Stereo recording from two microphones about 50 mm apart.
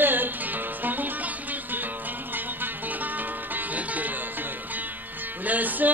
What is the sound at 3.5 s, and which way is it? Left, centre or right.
Music, right.